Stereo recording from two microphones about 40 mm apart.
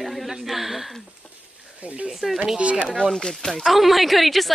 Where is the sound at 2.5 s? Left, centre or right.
Right.